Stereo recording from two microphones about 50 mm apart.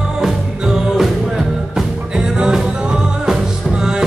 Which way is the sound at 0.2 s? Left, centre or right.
Centre.